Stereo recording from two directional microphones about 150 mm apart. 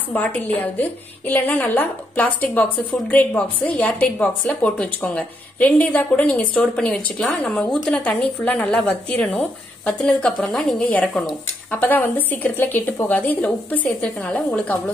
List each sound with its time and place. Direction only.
0.1 s a woman's voice: 10° left (ahead or behind)